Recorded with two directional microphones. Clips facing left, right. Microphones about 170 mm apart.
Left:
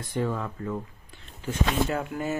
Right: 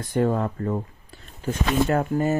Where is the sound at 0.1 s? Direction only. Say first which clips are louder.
Right 7 dB; 50° right (ahead or behind).